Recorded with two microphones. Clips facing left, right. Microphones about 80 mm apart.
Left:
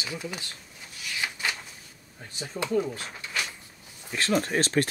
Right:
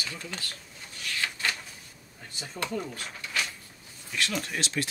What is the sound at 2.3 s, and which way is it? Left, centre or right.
Speech, centre.